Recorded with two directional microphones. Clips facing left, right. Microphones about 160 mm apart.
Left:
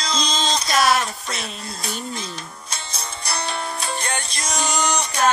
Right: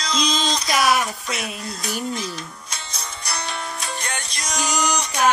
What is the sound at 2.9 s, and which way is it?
Music, 30° left (ahead or behind).